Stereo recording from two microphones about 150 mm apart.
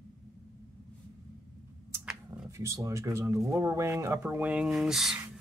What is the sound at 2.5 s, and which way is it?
Speech, 20° right (ahead or behind).